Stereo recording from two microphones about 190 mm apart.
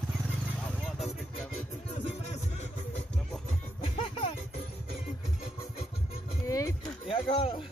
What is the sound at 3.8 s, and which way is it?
Music, 25° left (ahead or behind).